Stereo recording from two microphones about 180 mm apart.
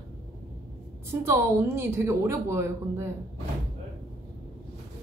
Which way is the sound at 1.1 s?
15° right (ahead or behind).